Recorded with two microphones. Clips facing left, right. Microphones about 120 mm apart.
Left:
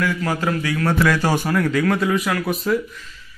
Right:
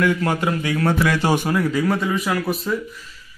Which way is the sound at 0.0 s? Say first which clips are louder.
Right 2 dB; 25° right (ahead or behind).